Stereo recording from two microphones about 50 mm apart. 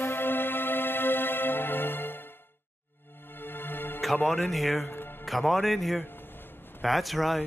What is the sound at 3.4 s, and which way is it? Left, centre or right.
Music, left.